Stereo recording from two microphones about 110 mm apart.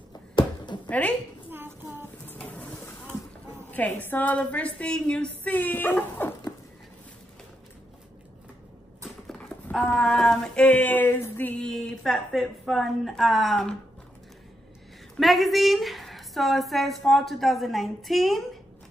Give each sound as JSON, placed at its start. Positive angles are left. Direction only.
{"t": 0.8, "sound": "a woman's voice", "side_deg": 15}
{"t": 1.5, "sound": "child singing", "side_deg": -20}
{"t": 2.3, "sound": "a sound", "side_deg": 10}
{"t": 3.7, "sound": "a woman's voice", "side_deg": 15}
{"t": 9.3, "sound": "clip-clop", "side_deg": 10}
{"t": 9.9, "sound": "a sound", "side_deg": 5}
{"t": 15.1, "sound": "a woman's voice", "side_deg": 0}